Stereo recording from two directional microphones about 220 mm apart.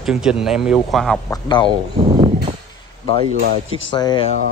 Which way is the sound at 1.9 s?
25° right (ahead or behind).